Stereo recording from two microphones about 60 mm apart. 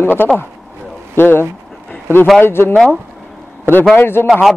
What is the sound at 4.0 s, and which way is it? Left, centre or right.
Speech, left.